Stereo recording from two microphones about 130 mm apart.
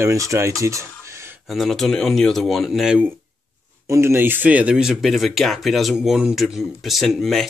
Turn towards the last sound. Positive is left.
turn(degrees=0)  # may be behind; listen again after turning